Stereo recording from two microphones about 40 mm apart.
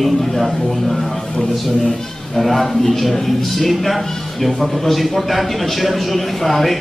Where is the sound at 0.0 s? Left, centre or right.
Centre.